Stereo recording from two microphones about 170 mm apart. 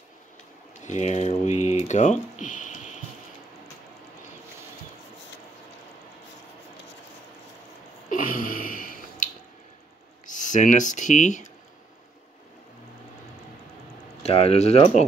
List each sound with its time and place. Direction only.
0.8 s speech: 40° left (ahead or behind)
8.1 s a sound: 55° left (ahead or behind)
10.2 s speech: 45° left (ahead or behind)
14.2 s speech: 35° left (ahead or behind)